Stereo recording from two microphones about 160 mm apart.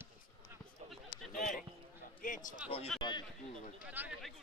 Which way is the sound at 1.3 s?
55° left (ahead or behind).